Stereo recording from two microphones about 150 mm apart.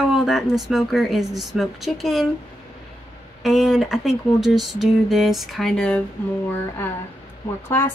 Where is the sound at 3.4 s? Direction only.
Centre (ahead or behind).